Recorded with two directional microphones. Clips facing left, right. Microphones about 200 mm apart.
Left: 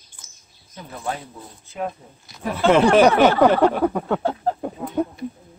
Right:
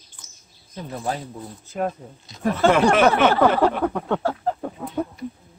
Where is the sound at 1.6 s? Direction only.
40° right (ahead or behind).